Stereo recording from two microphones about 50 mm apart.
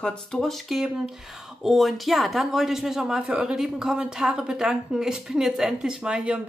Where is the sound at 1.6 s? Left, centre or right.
Centre.